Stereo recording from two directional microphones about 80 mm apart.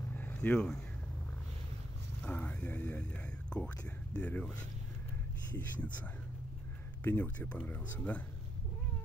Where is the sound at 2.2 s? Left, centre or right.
Centre.